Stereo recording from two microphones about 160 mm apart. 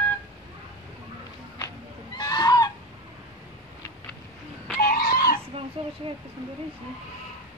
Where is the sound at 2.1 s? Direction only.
25° left (ahead or behind).